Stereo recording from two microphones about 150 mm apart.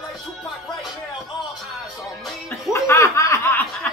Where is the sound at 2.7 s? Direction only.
20° left (ahead or behind).